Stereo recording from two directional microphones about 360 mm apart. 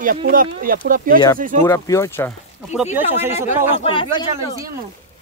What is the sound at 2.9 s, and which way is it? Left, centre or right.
Speech, centre.